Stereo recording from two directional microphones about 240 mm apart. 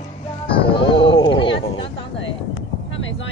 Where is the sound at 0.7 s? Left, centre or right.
Left.